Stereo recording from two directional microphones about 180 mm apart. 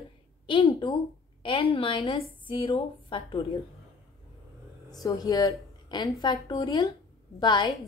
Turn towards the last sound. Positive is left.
turn(degrees=25)  # may be behind; listen again after turning